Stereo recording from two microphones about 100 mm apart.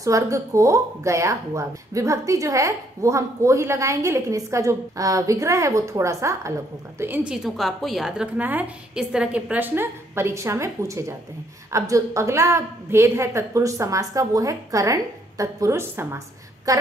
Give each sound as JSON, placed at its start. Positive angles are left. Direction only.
{"t": 0.0, "sound": "speech", "side_deg": -35}
{"t": 7.4, "sound": "a woman's voice", "side_deg": 0}
{"t": 8.4, "sound": "a woman's voice", "side_deg": -15}
{"t": 16.7, "sound": "speech", "side_deg": -35}